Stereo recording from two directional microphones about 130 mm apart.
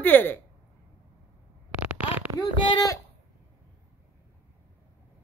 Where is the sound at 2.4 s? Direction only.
30° left (ahead or behind).